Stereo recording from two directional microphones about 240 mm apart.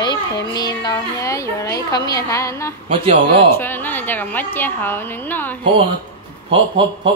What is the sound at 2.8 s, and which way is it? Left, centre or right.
Speech, right.